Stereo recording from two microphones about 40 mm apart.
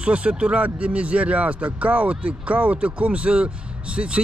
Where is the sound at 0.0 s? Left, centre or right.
Right.